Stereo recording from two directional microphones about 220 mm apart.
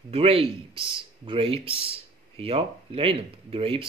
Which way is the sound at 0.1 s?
25° right (ahead or behind).